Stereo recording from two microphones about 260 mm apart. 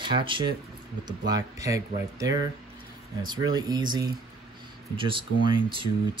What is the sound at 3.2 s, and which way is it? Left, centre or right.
Speech, centre.